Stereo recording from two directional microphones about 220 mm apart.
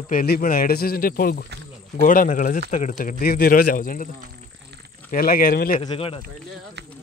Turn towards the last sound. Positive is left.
turn(degrees=25)  # may be behind; listen again after turning